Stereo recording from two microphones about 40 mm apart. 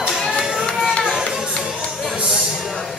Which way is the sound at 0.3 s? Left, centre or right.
Centre.